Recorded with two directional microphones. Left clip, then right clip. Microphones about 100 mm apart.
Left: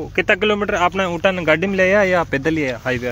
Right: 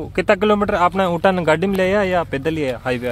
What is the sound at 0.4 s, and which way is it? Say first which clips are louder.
Speech: right 1 dB; 45° right (ahead or behind).